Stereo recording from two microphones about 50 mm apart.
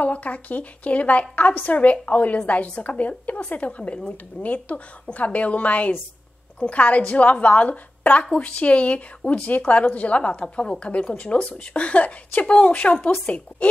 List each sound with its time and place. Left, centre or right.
0.0 s a woman's voice: left